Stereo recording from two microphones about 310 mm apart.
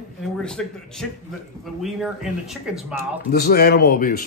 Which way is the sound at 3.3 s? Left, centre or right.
Left.